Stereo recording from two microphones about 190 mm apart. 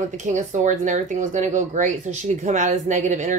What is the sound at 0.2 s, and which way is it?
Speech, 40° right (ahead or behind).